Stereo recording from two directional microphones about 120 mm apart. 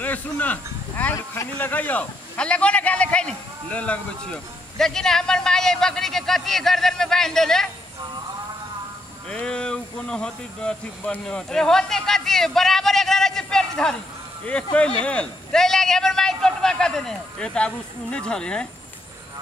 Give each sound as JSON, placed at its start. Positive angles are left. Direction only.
{"t": 0.0, "sound": "speech", "side_deg": 15}
{"t": 1.1, "sound": "speech", "side_deg": 25}
{"t": 1.6, "sound": "a man's voice", "side_deg": 15}
{"t": 9.3, "sound": "a man's voice", "side_deg": 5}